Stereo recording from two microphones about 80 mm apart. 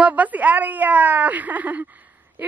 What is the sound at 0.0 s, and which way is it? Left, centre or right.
Speech, centre.